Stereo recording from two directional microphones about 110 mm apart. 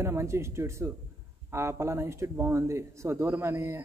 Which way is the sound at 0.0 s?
25° right (ahead or behind).